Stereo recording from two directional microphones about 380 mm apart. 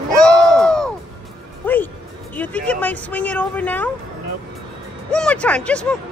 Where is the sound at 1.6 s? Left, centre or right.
Centre.